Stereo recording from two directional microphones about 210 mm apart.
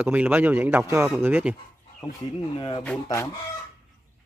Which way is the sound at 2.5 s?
25° left (ahead or behind).